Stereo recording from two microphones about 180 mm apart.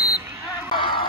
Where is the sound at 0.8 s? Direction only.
25° left (ahead or behind).